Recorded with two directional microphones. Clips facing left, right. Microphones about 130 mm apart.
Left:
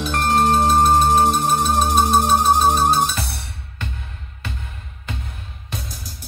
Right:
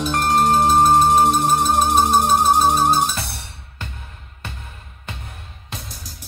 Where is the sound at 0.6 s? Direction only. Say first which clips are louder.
Right 1 dB; centre (ahead or behind).